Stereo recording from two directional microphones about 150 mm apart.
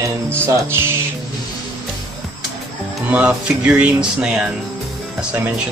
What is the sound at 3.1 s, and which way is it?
Speech, 10° right (ahead or behind).